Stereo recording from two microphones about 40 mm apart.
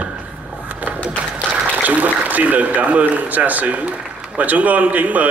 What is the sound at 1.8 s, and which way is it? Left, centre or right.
A man's voice, right.